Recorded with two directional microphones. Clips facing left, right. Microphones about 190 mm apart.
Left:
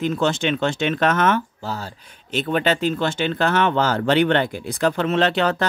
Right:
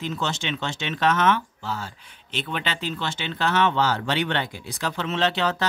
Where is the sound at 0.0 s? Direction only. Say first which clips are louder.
Left 8 dB; 55° left (ahead or behind).